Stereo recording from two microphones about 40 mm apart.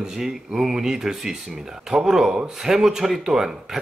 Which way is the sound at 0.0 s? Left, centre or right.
Centre.